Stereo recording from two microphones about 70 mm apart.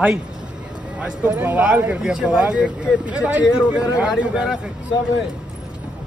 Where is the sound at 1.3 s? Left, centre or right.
Right.